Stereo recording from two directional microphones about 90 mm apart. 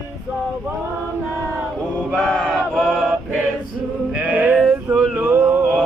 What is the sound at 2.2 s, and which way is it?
Chant, centre (ahead or behind).